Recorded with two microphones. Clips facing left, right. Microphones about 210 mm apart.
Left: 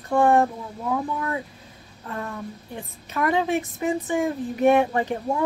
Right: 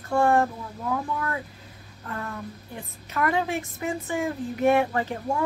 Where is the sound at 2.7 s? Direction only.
20° left (ahead or behind).